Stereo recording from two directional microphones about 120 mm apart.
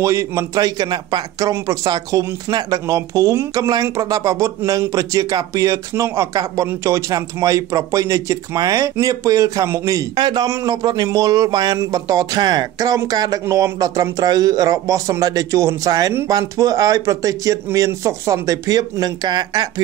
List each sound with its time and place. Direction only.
0.0 s speech: 25° right (ahead or behind)